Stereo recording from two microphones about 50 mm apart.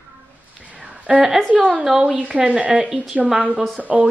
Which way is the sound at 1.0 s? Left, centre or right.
Right.